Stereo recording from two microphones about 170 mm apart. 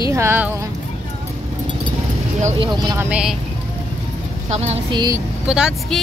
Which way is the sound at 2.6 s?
25° right (ahead or behind).